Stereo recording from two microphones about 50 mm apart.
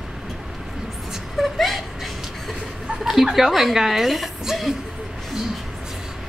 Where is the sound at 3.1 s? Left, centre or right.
Centre.